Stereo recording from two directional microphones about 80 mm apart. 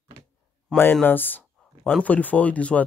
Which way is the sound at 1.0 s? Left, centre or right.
Left.